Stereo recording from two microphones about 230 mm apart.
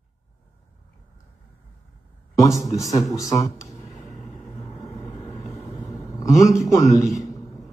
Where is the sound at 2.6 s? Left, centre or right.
Centre.